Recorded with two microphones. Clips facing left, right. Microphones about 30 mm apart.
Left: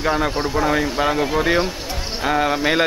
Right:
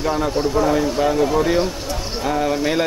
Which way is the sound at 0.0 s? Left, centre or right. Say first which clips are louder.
Even; left.